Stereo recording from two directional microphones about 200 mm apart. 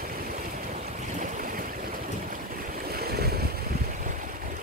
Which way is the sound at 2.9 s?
50° right (ahead or behind).